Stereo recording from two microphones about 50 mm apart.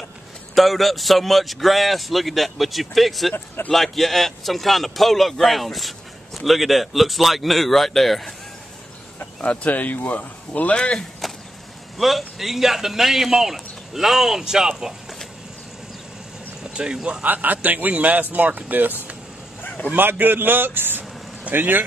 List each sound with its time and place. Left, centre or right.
0.6 s a man's voice: centre
9.4 s speech: left
10.8 s speech: centre
12.0 s speech: centre
16.7 s speech: centre
17.2 s a man's voice: right